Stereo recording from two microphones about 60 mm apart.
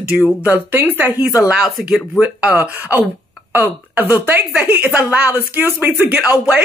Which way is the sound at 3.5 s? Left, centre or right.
Right.